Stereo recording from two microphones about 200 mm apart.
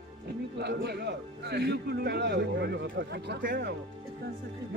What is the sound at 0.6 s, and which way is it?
A man's voice, 55° right (ahead or behind).